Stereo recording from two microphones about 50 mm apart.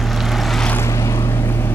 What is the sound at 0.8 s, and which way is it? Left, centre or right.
Vehicle, left.